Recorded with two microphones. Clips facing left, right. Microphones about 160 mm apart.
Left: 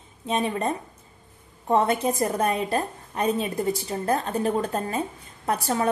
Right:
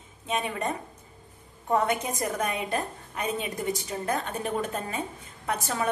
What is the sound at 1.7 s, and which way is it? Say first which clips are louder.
A woman's voice: left 4 dB; 30° left (ahead or behind).